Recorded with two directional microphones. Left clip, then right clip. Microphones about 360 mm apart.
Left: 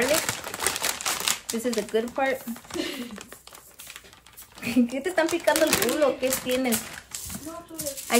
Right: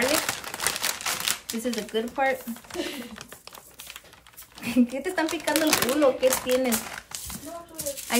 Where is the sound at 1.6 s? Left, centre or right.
Centre.